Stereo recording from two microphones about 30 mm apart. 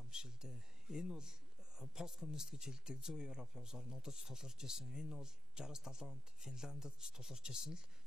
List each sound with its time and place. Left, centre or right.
0.1 s speech: right